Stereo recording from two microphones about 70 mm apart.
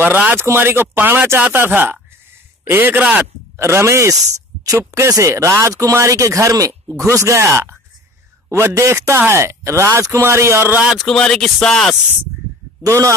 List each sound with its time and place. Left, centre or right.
0.0 s speech: right
0.4 s a man's voice: right
3.5 s speech: right
11.0 s speech: centre
12.8 s speech: right